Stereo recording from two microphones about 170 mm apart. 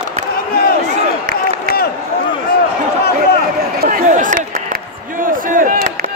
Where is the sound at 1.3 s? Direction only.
65° left (ahead or behind).